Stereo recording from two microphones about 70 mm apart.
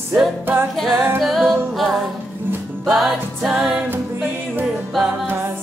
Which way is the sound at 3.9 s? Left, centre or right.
Right.